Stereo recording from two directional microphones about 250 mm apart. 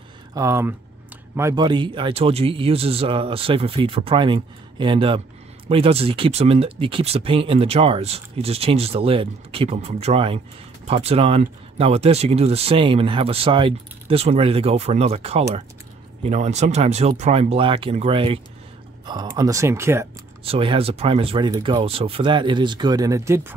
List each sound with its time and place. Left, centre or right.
0.3 s speech: centre
20.4 s speech: right